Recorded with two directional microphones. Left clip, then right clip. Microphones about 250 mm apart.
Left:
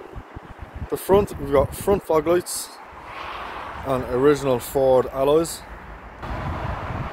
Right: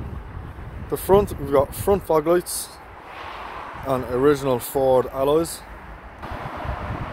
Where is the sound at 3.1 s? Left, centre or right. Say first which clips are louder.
Left 2 dB; left.